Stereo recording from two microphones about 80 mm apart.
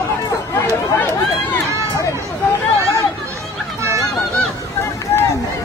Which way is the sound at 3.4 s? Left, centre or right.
Centre.